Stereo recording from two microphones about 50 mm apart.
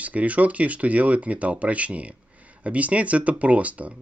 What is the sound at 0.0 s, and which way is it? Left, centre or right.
Speech, right.